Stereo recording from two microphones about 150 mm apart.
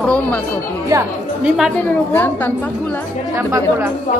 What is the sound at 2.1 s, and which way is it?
Speech, 10° left (ahead or behind).